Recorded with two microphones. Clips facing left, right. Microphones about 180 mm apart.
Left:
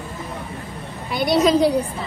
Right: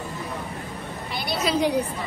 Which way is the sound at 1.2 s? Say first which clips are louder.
Left 8 dB; 35° left (ahead or behind).